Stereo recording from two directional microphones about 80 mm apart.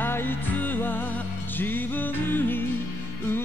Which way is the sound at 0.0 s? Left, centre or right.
Left.